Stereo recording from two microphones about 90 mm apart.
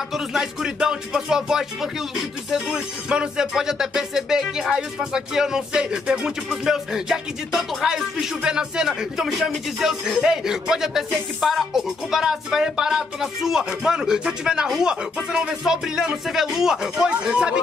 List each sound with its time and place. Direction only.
0.1 s speech: 5° right (ahead or behind)